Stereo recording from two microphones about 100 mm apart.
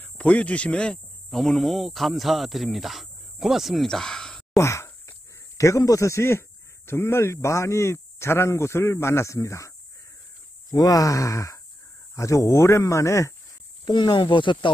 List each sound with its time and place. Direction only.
0.0 s speech: 15° left (ahead or behind)
4.6 s a sound: 30° left (ahead or behind)
6.9 s speech: 25° left (ahead or behind)
13.8 s speech: 45° left (ahead or behind)